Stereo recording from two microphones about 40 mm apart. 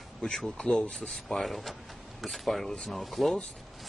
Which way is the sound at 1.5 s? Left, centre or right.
Centre.